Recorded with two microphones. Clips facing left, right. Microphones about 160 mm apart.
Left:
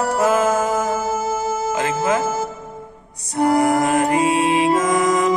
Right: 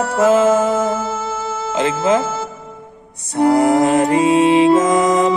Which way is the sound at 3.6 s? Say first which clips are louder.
Right 4 dB; 25° right (ahead or behind).